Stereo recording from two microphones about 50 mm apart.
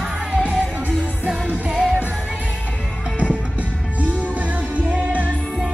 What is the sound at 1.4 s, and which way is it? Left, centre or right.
Music, right.